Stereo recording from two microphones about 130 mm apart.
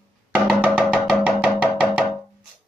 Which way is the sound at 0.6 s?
10° right (ahead or behind).